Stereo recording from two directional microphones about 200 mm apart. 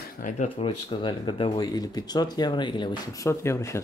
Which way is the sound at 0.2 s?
35° left (ahead or behind).